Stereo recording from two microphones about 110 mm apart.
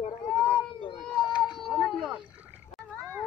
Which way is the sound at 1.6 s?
Centre (ahead or behind).